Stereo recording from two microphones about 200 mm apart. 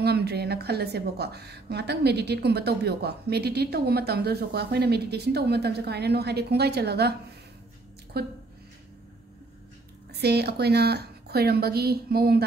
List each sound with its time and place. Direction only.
0.0 s speech: 55° right (ahead or behind)
10.2 s speech: 55° right (ahead or behind)